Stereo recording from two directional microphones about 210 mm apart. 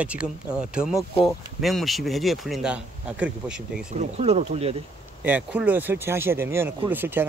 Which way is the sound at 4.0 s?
30° right (ahead or behind).